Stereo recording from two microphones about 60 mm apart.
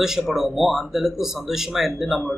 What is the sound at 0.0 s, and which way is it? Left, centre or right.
Speech, centre.